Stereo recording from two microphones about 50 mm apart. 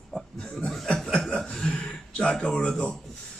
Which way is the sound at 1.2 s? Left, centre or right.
Centre.